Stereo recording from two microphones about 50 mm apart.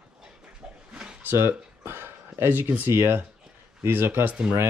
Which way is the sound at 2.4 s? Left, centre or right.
Right.